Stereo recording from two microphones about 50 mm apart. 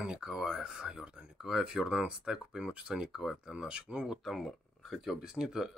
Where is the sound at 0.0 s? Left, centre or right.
Centre.